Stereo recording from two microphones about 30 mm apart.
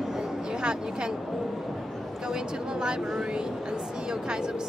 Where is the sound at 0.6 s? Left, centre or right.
Right.